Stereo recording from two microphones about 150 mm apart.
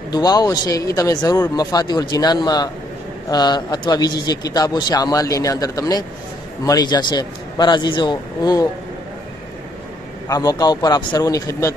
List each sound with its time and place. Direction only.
0.1 s a man's voice: 25° left (ahead or behind)
10.2 s a man's voice: 25° left (ahead or behind)